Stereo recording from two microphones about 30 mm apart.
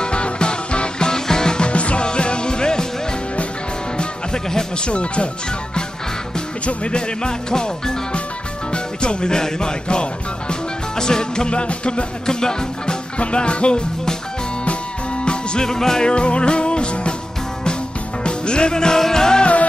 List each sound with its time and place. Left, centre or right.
0.0 s music: left
1.7 s music: left
3.9 s music: left
6.6 s speech: left
8.7 s music: left
12.3 s speech: left
13.2 s music: left
15.6 s speech: centre
16.1 s music: left
18.2 s music: left